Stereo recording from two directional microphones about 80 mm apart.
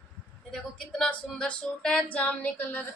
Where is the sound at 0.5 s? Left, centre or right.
Centre.